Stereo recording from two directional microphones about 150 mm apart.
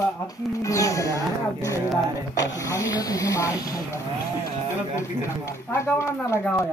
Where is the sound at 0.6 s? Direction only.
20° left (ahead or behind).